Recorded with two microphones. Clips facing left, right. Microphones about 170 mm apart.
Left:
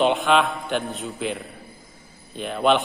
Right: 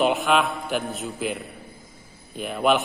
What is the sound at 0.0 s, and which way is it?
A man's voice, 5° right (ahead or behind).